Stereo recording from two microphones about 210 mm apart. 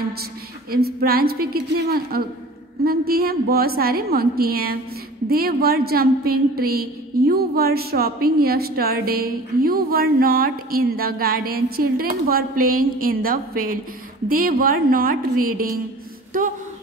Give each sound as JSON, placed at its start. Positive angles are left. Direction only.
{"t": 0.2, "sound": "a woman's voice", "side_deg": -45}